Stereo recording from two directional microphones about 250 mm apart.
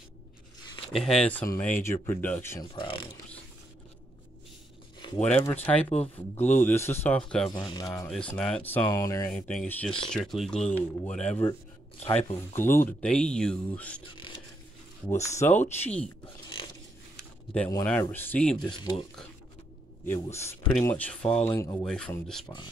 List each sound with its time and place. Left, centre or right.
0.9 s speech: centre
5.0 s speech: centre
7.5 s speech: centre
8.1 s speech: centre
12.0 s speech: left
12.5 s speech: centre
15.0 s speech: centre
17.2 s speech: centre
18.7 s speech: centre
20.1 s speech: centre